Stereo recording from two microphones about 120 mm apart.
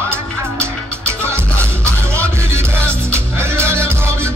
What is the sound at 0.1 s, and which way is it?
Music, 20° right (ahead or behind).